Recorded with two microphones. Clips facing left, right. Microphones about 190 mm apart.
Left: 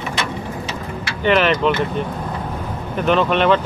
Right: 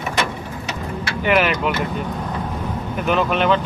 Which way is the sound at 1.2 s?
10° right (ahead or behind).